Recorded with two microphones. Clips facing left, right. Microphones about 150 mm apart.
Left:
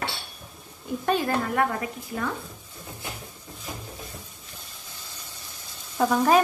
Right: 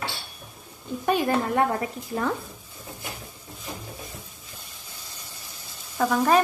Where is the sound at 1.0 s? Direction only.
10° right (ahead or behind).